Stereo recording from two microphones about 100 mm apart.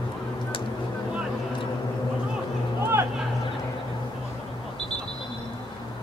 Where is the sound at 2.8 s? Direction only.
25° right (ahead or behind).